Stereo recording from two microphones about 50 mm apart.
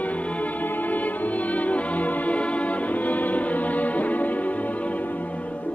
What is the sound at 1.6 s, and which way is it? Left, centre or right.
Music, left.